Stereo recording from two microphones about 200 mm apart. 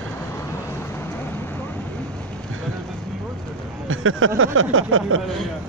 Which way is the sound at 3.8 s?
90° right.